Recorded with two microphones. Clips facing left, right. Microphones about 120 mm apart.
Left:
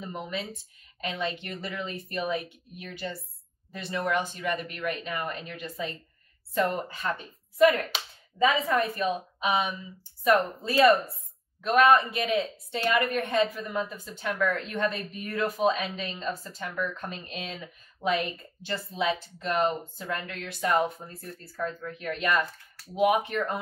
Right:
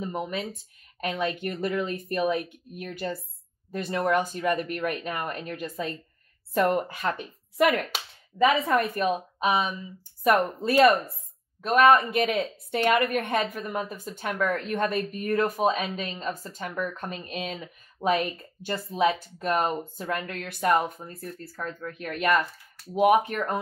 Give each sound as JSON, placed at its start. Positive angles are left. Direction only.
{"t": 1.0, "sound": "a woman's voice", "side_deg": -50}
{"t": 7.9, "sound": "a woman's voice", "side_deg": -60}
{"t": 11.6, "sound": "a woman's voice", "side_deg": -45}
{"t": 18.0, "sound": "speech", "side_deg": -25}
{"t": 18.7, "sound": "a woman's voice", "side_deg": -45}
{"t": 23.0, "sound": "a woman's voice", "side_deg": -45}